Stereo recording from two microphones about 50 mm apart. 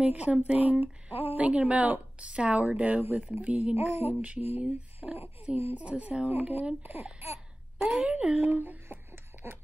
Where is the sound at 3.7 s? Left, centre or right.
Right.